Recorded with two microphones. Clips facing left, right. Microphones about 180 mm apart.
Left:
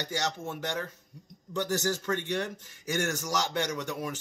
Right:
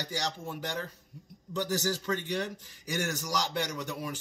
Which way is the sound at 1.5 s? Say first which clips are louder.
Left 1 dB; 10° right (ahead or behind).